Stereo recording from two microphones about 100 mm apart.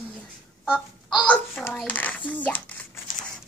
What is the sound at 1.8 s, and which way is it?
Speech, 15° left (ahead or behind).